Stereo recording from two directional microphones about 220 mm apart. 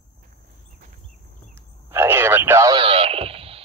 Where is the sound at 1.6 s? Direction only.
10° right (ahead or behind).